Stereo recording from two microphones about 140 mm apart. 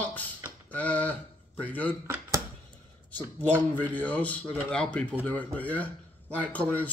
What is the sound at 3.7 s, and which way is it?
Speech, 10° left (ahead or behind).